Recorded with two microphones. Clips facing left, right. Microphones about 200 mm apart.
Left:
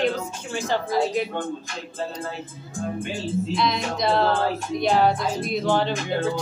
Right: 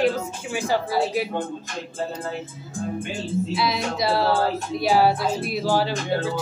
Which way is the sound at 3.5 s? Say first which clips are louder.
Even; 5° right (ahead or behind).